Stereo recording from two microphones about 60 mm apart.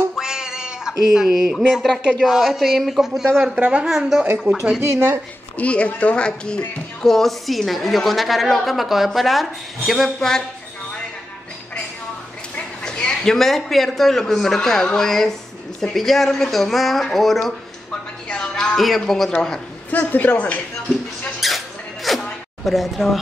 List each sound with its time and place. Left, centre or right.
0.2 s cat: centre
1.1 s a woman's voice: centre
3.9 s a woman's voice: centre
4.5 s speech: right
5.6 s a woman's voice: left; by 10.4 s centre
12.8 s a man's voice: centre
19.9 s speech: left
21.4 s a sound: centre
22.7 s a woman's voice: centre